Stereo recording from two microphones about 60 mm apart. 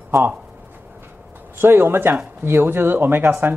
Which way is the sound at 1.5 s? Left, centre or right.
Right.